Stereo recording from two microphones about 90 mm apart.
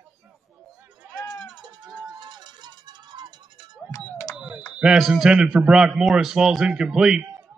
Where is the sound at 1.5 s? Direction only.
50° right (ahead or behind).